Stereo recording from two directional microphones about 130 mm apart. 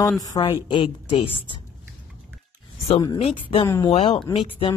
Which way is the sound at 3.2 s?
45° left (ahead or behind).